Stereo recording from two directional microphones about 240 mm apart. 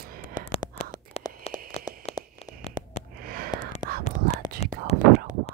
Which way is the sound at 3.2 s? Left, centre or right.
Right.